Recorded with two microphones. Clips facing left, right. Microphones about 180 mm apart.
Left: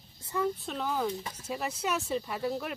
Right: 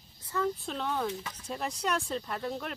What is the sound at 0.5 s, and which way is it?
Speech, centre (ahead or behind).